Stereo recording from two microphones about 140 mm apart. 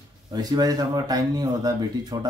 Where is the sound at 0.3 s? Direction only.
30° right (ahead or behind).